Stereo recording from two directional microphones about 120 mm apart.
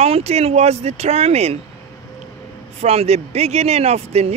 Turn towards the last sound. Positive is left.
turn(degrees=-65)  # may be behind; listen again after turning